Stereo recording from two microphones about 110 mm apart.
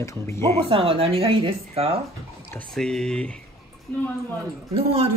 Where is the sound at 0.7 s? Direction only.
55° right (ahead or behind).